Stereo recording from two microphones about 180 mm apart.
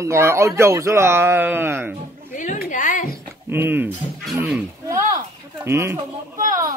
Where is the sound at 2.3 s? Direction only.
45° left (ahead or behind).